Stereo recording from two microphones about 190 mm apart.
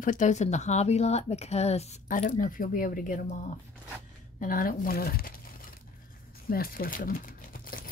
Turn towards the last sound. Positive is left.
turn(degrees=50)  # may be behind; listen again after turning